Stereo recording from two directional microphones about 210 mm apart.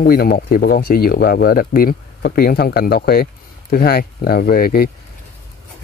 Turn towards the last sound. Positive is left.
turn(degrees=45)  # may be behind; listen again after turning